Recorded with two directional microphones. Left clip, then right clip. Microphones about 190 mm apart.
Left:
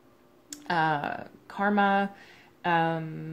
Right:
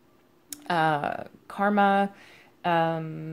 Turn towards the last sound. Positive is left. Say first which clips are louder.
# right 2 dB
turn(degrees=-40)  # may be behind; listen again after turning